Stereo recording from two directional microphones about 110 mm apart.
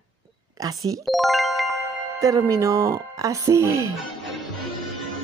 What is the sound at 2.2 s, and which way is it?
A woman's voice, 30° right (ahead or behind).